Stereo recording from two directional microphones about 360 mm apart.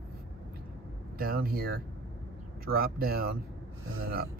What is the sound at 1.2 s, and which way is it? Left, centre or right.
Speech, right.